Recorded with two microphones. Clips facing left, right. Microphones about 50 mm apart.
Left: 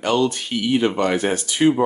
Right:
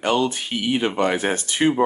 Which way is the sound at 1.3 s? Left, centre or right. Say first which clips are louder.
Left 2 dB; right.